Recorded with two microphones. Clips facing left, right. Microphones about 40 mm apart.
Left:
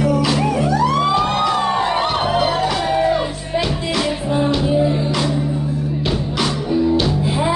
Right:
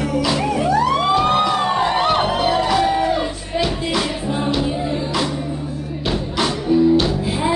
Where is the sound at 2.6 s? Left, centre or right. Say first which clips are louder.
Right 1 dB; centre.